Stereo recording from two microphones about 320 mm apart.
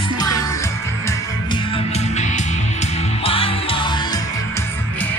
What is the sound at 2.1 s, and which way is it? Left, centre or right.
Music, left.